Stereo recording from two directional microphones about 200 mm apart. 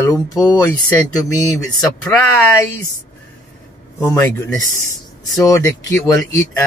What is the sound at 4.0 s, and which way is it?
Speech, 15° left (ahead or behind).